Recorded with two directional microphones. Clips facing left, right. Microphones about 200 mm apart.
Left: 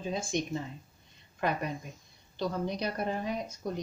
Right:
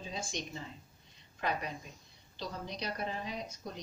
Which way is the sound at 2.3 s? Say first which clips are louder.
Left 9 dB; 55° left (ahead or behind).